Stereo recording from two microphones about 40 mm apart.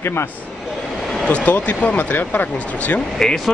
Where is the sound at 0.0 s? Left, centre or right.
Left.